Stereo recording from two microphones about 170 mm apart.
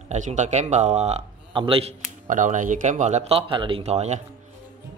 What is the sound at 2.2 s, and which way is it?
Speech, 50° right (ahead or behind).